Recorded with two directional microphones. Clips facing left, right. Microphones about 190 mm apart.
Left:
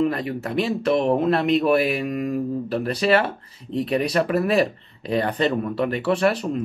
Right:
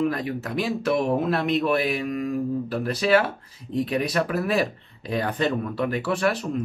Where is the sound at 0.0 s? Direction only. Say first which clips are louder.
Left 2 dB; centre (ahead or behind).